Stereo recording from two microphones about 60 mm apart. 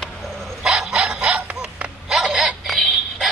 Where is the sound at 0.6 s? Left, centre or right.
Centre.